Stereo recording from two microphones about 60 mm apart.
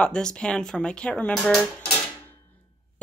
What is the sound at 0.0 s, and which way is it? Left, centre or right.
A woman's voice, centre.